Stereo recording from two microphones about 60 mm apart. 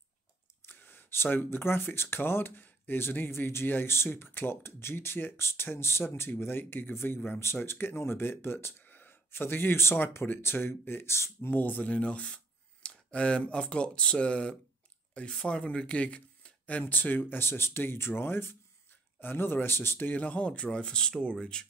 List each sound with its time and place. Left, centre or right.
0.7 s speech: left
8.8 s gasp: left
9.9 s speech: left
11.5 s speech: left
16.9 s speech: left; by 21.6 s centre